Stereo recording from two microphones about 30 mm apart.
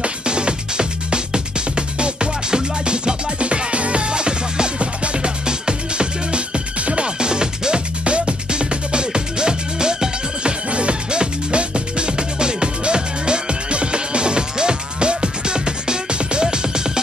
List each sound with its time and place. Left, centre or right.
0.0 s music: right
10.7 s music: right